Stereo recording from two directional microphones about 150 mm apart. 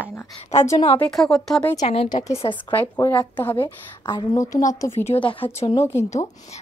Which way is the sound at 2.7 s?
10° left (ahead or behind).